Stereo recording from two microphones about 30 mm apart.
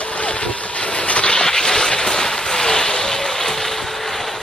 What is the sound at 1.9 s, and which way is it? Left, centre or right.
Vehicle, left.